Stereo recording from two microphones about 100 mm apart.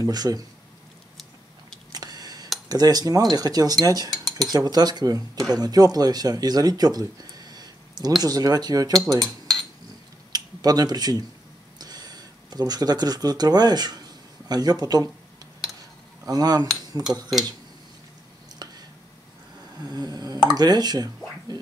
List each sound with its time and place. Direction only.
0.0 s speech: 40° right (ahead or behind)
1.9 s a sound: 40° right (ahead or behind)
2.7 s speech: 40° right (ahead or behind)
9.2 s cutlery: 5° left (ahead or behind)
10.3 s speech: 40° right (ahead or behind)
16.3 s speech: 40° right (ahead or behind)
18.6 s a sound: 40° right (ahead or behind)
19.8 s speech: 40° right (ahead or behind)